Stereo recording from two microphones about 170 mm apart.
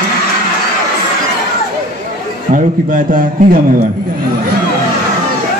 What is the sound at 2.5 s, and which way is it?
A man's voice, 55° right (ahead or behind).